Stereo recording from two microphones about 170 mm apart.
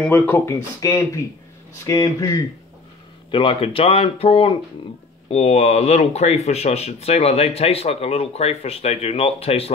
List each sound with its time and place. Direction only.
0.0 s speech: 10° left (ahead or behind)
3.3 s speech: 30° left (ahead or behind)